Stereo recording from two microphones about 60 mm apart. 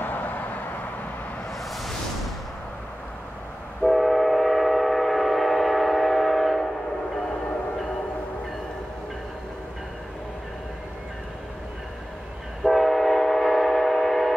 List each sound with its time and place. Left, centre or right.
0.0 s vehicle: left
1.7 s a sound: centre
3.8 s train: centre
12.6 s train: centre